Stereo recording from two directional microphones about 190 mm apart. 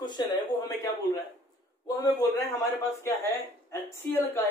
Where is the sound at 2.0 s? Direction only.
20° left (ahead or behind).